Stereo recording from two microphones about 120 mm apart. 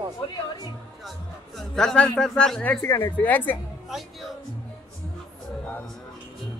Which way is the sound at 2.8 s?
20° left (ahead or behind).